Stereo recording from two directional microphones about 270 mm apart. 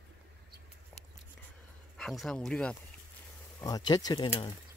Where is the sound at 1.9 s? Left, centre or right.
Centre.